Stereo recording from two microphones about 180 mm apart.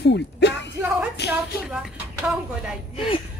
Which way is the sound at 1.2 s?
70° left (ahead or behind).